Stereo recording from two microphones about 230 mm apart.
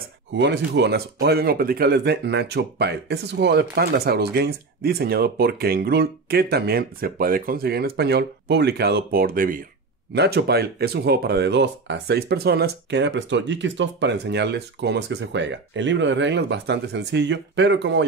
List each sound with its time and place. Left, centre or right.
0.3 s speech: right